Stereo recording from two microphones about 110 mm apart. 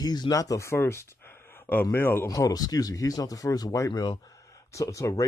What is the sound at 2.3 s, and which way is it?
Speech, 35° left (ahead or behind).